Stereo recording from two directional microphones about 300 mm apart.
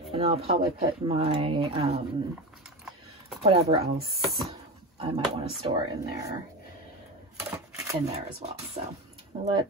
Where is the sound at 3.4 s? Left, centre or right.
Centre.